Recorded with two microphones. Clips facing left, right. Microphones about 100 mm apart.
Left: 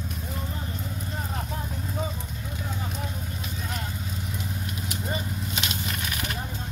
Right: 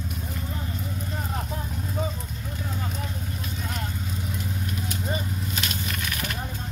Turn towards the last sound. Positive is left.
turn(degrees=20)  # may be behind; listen again after turning